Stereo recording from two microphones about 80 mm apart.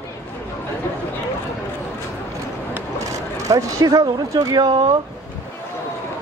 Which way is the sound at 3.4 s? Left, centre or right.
Right.